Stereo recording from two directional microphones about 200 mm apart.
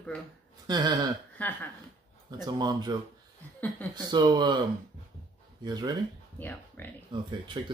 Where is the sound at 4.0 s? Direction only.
20° right (ahead or behind).